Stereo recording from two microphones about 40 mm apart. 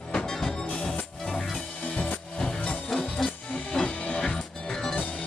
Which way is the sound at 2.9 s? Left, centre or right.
Centre.